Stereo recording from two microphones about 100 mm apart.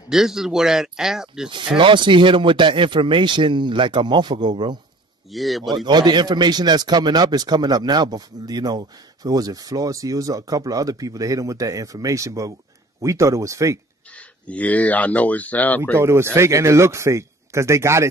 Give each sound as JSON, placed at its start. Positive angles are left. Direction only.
{"t": 0.1, "sound": "speech", "side_deg": -5}
{"t": 1.8, "sound": "speech", "side_deg": -55}
{"t": 5.3, "sound": "speech", "side_deg": 0}
{"t": 5.9, "sound": "a man's voice", "side_deg": -45}
{"t": 14.5, "sound": "speech", "side_deg": 15}
{"t": 16.0, "sound": "speech", "side_deg": -25}